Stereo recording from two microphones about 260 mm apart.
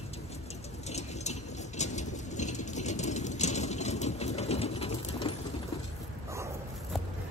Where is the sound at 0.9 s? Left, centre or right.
Left.